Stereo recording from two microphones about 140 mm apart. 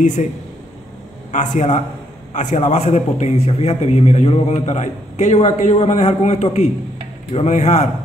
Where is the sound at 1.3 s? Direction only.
60° left (ahead or behind).